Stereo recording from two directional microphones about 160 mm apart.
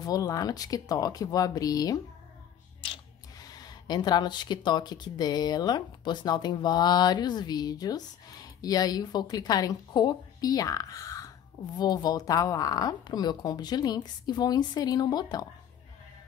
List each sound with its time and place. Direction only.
0.0 s speech: 25° left (ahead or behind)